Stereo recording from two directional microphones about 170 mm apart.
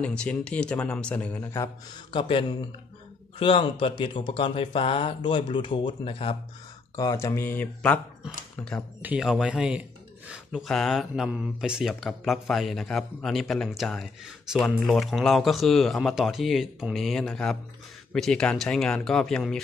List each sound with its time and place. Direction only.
0.0 s speech: 5° left (ahead or behind)
2.0 s speech: 30° left (ahead or behind)
7.0 s speech: 20° left (ahead or behind)
9.0 s speech: 5° right (ahead or behind)